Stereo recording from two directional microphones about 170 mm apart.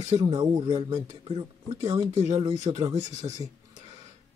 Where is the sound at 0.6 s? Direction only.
40° right (ahead or behind).